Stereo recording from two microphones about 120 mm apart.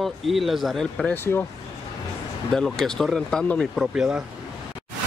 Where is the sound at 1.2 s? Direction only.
20° left (ahead or behind).